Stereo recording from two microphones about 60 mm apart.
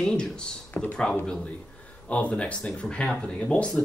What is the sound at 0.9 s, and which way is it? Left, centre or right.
Speech, centre.